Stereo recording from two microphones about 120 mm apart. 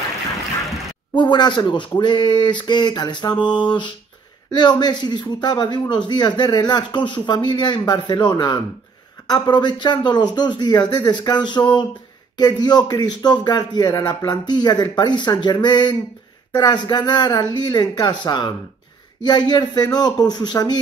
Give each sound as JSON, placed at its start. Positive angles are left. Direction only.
{"t": 1.1, "sound": "a man's voice", "side_deg": 40}